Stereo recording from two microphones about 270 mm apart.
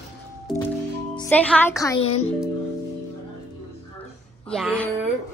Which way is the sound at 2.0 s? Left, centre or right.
Left.